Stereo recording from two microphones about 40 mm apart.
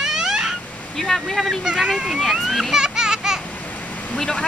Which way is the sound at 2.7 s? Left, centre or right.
Centre.